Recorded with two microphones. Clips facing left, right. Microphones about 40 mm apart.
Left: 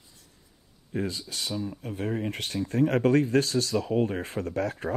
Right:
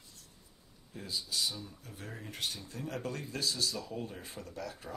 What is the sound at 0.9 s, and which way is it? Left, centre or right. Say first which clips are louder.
Speech: left 6 dB; left.